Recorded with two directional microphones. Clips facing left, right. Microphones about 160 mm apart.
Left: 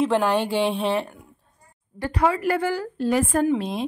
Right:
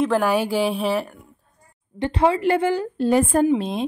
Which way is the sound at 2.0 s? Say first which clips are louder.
Right 3 dB; 25° right (ahead or behind).